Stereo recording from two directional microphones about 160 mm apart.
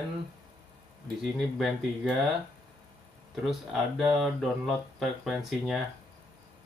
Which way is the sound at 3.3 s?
Centre (ahead or behind).